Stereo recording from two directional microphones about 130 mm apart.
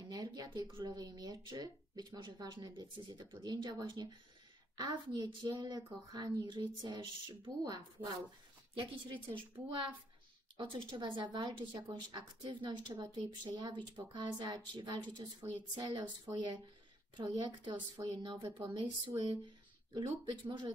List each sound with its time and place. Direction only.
0.0 s speech: 30° right (ahead or behind)